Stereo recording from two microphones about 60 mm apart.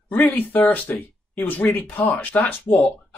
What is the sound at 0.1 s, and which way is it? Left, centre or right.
Speech, left.